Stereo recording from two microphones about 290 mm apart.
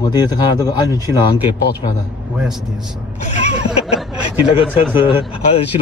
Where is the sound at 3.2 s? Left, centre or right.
Left.